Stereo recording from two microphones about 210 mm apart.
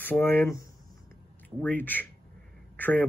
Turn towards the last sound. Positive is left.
turn(degrees=10)  # may be behind; listen again after turning